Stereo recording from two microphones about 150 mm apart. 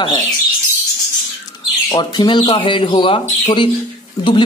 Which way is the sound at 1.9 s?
30° left (ahead or behind).